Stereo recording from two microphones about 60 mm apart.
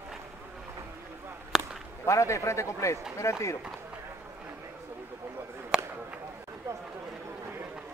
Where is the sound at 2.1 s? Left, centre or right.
Left.